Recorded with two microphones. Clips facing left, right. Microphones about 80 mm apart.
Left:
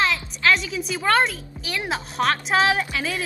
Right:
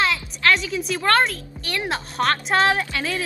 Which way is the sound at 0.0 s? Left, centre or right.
Centre.